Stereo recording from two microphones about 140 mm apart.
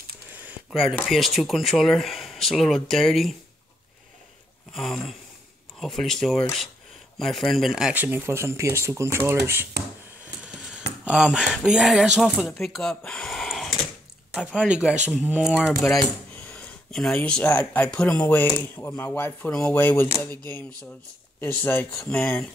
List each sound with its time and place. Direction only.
0.3 s a sound: 15° right (ahead or behind)
0.7 s speech: centre (ahead or behind)
4.7 s speech: centre (ahead or behind); by 9.7 s 15° right (ahead or behind)
11.1 s speech: 5° right (ahead or behind)
16.3 s speech: 10° left (ahead or behind)